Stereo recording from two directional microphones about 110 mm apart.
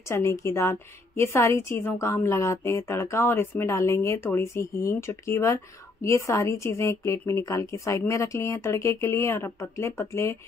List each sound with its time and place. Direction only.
0.1 s a woman's voice: 25° left (ahead or behind)